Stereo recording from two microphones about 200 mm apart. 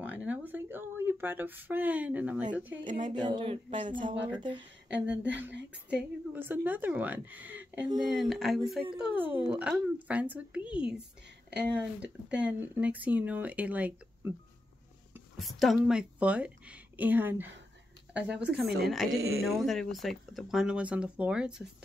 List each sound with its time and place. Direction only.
0.0 s speech: 10° right (ahead or behind)
2.8 s a sound: 40° right (ahead or behind)
3.2 s speech: 25° right (ahead or behind)
4.9 s speech: 5° right (ahead or behind)
15.3 s a woman's voice: centre (ahead or behind)
19.1 s speech: 90° right
19.4 s speech: centre (ahead or behind)